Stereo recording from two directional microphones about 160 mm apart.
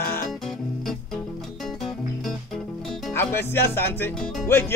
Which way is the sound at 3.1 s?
15° left (ahead or behind).